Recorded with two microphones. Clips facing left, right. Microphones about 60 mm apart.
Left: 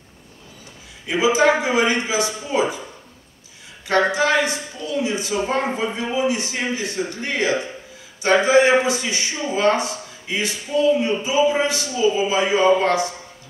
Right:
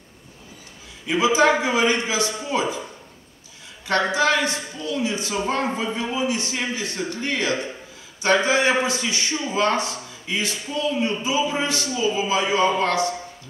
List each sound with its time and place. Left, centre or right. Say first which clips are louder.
1.0 s a man's voice: left 1 dB; centre
3.8 s a man's voice: left 2 dB; centre